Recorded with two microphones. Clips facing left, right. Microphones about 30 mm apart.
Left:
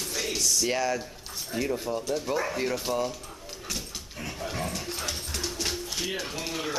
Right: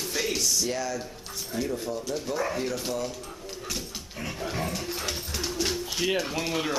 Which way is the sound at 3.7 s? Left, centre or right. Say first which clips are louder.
Left 1 dB; centre.